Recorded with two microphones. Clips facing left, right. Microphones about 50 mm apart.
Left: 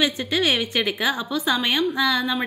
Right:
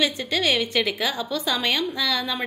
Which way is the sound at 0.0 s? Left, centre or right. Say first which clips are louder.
Left 2 dB; left.